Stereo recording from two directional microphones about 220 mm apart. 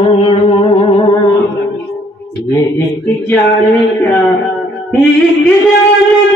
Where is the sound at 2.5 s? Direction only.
10° left (ahead or behind).